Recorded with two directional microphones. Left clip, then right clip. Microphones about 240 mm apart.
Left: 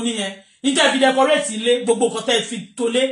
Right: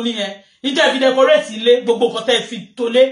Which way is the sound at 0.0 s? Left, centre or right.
Centre.